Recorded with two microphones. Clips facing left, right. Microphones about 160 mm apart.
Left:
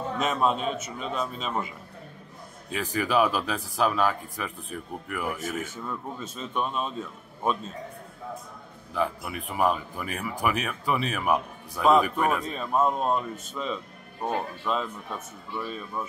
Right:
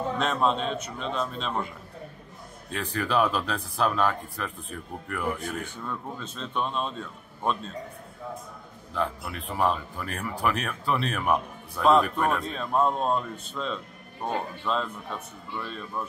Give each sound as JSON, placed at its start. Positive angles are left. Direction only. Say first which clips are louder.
{"t": 0.2, "sound": "speech", "louder": "left 1 dB", "side_deg": 5}
{"t": 2.7, "sound": "speech", "louder": "left 1 dB", "side_deg": 10}
{"t": 8.9, "sound": "speech", "louder": "left 2 dB", "side_deg": 10}